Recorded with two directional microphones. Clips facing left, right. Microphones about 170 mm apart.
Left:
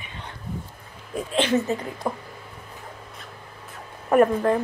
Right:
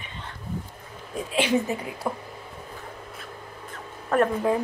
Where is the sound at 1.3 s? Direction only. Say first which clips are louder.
Left 1 dB; 10° right (ahead or behind).